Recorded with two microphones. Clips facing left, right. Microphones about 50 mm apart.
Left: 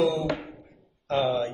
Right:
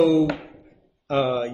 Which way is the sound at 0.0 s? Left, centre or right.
Right.